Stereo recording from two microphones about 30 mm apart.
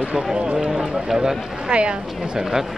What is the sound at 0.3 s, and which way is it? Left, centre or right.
Speech, right.